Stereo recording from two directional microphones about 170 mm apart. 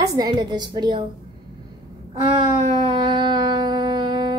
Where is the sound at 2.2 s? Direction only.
30° right (ahead or behind).